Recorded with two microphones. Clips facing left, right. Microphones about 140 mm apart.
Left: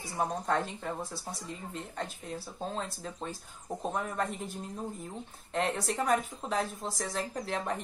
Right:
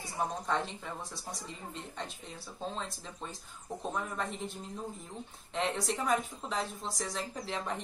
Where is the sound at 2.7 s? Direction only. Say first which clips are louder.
Left 4 dB; 40° left (ahead or behind).